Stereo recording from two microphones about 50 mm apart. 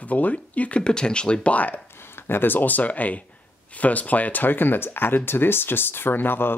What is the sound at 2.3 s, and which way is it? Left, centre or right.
Speech, left.